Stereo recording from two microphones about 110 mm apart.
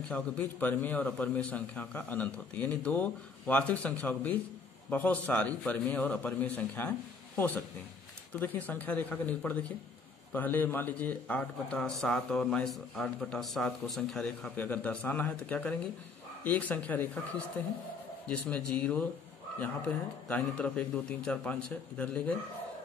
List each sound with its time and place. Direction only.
0.1 s speech: 15° left (ahead or behind)
14.6 s speech: 15° left (ahead or behind)
20.2 s speech: 10° left (ahead or behind)